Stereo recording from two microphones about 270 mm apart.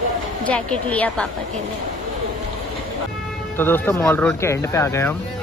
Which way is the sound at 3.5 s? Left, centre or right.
Centre.